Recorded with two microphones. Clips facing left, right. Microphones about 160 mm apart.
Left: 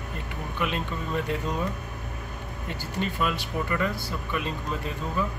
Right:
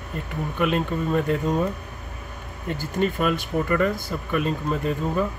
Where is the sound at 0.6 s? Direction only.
45° right (ahead or behind).